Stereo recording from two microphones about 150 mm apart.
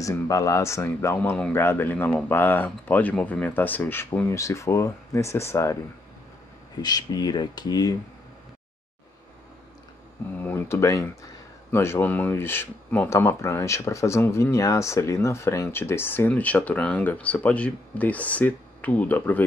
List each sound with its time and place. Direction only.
0.0 s speech: 20° left (ahead or behind)
6.8 s speech: 25° left (ahead or behind)
10.4 s speech: 15° left (ahead or behind)